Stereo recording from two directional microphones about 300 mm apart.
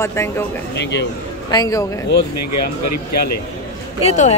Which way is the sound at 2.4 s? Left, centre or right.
Left.